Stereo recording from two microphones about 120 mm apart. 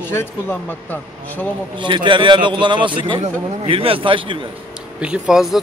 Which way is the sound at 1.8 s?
40° right (ahead or behind).